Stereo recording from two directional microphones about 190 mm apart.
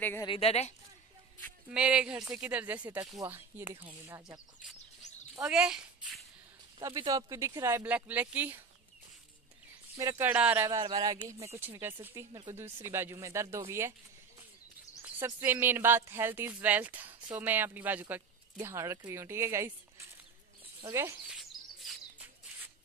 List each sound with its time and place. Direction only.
0.0 s a woman's voice: 10° left (ahead or behind)
0.3 s a woman's voice: 30° left (ahead or behind)
1.7 s speech: 5° right (ahead or behind)
5.3 s speech: 5° right (ahead or behind)
6.8 s speech: 20° right (ahead or behind)
9.9 s speech: 15° right (ahead or behind)
10.8 s speech: 20° right (ahead or behind)
12.3 s speech: 25° right (ahead or behind)
12.5 s speech: 15° right (ahead or behind)
15.0 s speech: 15° right (ahead or behind)
21.4 s chirp: centre (ahead or behind)